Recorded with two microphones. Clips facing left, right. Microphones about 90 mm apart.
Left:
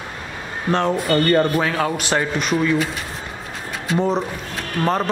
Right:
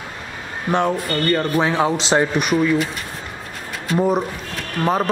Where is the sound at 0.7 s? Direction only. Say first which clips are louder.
Left 1 dB; 15° right (ahead or behind).